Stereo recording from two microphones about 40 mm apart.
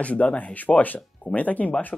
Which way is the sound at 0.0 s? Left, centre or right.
Left.